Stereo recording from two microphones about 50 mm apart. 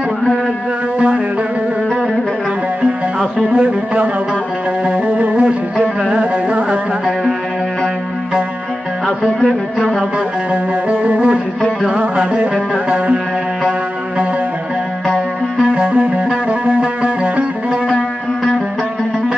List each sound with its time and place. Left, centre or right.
0.9 s music: right
3.4 s music: right
9.8 s a sound: centre
10.5 s music: right
15.7 s music: right
17.8 s music: left